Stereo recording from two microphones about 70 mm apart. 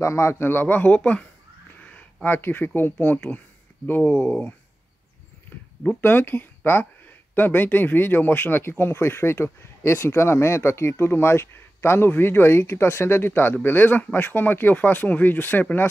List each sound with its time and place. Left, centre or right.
0.0 s speech: left; by 1.2 s centre
1.8 s a sound: centre
2.2 s speech: left
5.9 s speech: left